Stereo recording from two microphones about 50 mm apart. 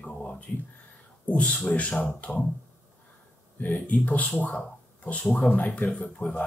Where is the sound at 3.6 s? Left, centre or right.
Left.